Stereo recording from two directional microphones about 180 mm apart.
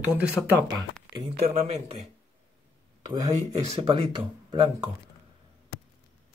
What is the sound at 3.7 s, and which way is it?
Speech, 30° right (ahead or behind).